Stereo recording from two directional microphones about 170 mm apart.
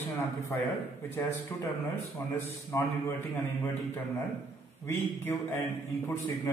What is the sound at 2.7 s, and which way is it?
Speech, 15° left (ahead or behind).